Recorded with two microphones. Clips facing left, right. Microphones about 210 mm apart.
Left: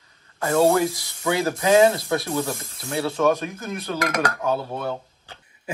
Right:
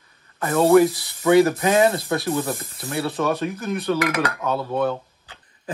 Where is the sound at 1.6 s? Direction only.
55° right (ahead or behind).